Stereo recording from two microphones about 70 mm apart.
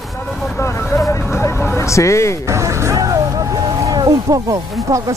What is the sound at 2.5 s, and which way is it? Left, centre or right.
Vehicle, right.